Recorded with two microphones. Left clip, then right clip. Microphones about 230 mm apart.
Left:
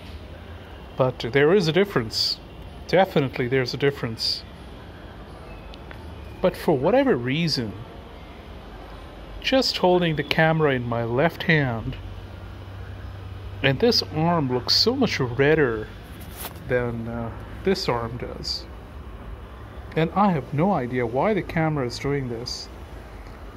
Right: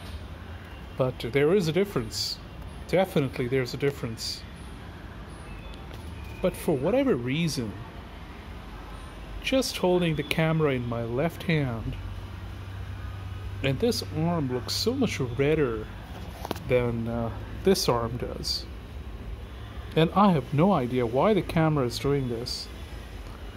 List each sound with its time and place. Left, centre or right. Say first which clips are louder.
0.9 s speech: left 5 dB; centre
6.4 s speech: left 6 dB; centre
9.4 s speech: left 5 dB; centre
13.6 s speech: left 7 dB; centre
16.6 s speech: left 1 dB; centre
17.7 s speech: even; centre
19.9 s speech: left 1 dB; right